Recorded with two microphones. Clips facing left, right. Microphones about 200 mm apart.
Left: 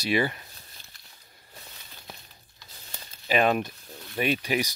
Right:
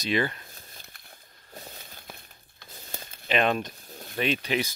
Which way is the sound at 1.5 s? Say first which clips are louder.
Right 6 dB; 40° right (ahead or behind).